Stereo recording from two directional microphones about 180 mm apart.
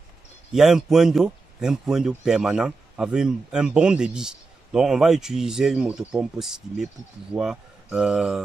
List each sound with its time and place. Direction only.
0.5 s speech: centre (ahead or behind)